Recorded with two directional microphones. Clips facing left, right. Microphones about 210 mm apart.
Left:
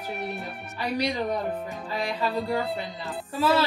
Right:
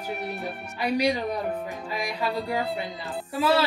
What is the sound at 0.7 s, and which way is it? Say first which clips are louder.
Speech: right 3 dB; 10° right (ahead or behind).